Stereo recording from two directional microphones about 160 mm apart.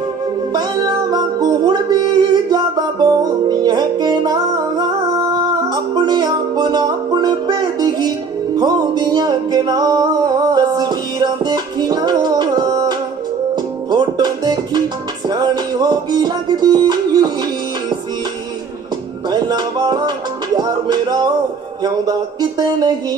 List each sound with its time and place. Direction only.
0.5 s music: 25° right (ahead or behind)
19.2 s music: 25° right (ahead or behind)
21.8 s speech: 25° right (ahead or behind)